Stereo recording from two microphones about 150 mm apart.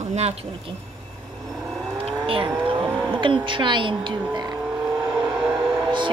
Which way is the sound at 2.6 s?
35° right (ahead or behind).